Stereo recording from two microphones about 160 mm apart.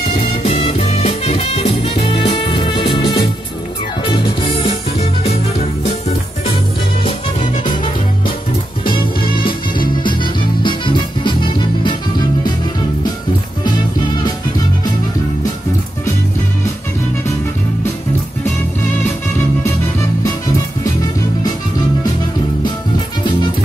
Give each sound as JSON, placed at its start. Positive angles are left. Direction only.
{"t": 0.4, "sound": "music", "side_deg": 40}
{"t": 7.1, "sound": "music", "side_deg": 45}
{"t": 10.6, "sound": "music", "side_deg": 30}